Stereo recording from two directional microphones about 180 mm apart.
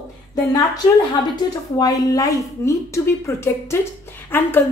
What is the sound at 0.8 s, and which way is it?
A woman's voice, 25° left (ahead or behind).